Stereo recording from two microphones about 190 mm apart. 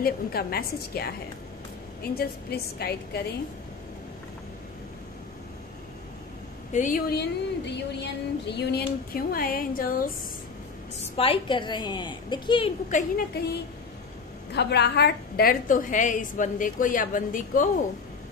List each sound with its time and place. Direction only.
0.0 s a woman's voice: 55° left (ahead or behind)
2.1 s a woman's voice: 55° left (ahead or behind)
6.7 s a woman's voice: 45° left (ahead or behind)
7.2 s a woman's voice: 65° left (ahead or behind); by 10.1 s 50° left (ahead or behind)
11.1 s a woman's voice: 25° left (ahead or behind)
14.5 s a woman's voice: 60° left (ahead or behind); by 17.6 s 45° left (ahead or behind)